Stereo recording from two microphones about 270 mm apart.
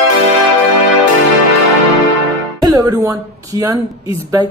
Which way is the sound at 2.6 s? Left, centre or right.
Centre.